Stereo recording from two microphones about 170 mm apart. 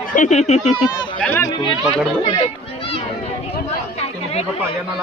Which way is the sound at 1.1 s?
10° left (ahead or behind).